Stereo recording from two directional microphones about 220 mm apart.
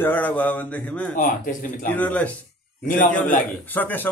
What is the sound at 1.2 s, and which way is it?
Speech, 40° left (ahead or behind).